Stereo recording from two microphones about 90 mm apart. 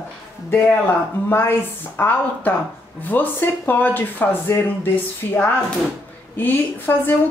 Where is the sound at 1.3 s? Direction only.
25° left (ahead or behind).